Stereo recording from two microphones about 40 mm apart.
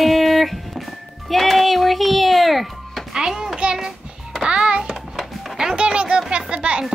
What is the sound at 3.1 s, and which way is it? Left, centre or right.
Child singing, centre.